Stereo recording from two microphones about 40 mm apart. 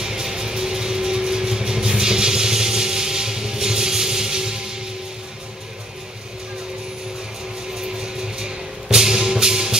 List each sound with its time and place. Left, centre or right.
0.0 s vehicle: centre
7.8 s music: centre